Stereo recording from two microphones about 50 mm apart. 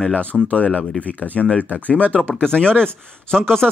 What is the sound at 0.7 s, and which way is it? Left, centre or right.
Speech, left.